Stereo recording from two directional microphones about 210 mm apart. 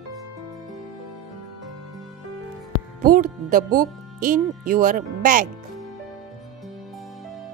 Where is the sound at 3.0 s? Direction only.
40° right (ahead or behind).